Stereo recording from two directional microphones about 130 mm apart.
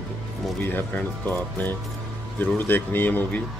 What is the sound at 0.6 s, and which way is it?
Speech, 15° left (ahead or behind).